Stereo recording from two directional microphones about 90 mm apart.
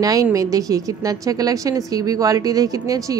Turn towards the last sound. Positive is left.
turn(degrees=-40)  # may be behind; listen again after turning